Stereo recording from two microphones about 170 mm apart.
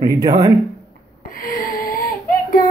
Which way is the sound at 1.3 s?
55° left (ahead or behind).